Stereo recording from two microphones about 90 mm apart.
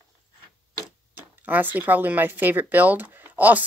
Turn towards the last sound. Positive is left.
turn(degrees=-20)  # may be behind; listen again after turning